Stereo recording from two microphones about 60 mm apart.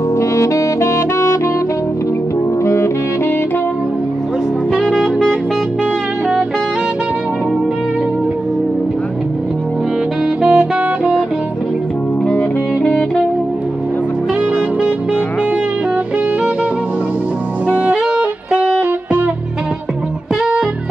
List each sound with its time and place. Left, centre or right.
0.2 s saxophone: left
2.6 s saxophone: left
4.7 s music: centre
10.4 s music: centre
17.6 s saxophone: right